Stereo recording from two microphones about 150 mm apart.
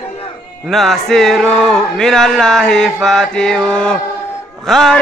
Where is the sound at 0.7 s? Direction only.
Centre (ahead or behind).